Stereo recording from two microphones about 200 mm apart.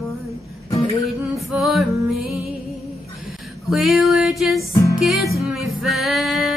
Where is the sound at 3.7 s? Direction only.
Centre (ahead or behind).